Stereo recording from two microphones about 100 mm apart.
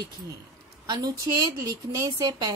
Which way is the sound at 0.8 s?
40° right (ahead or behind).